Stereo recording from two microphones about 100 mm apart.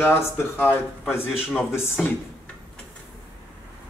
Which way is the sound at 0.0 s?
25° left (ahead or behind).